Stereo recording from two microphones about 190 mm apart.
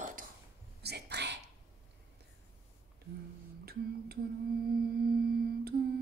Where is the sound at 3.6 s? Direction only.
55° right (ahead or behind).